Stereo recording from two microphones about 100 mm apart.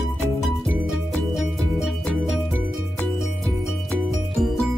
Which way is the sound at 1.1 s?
Centre (ahead or behind).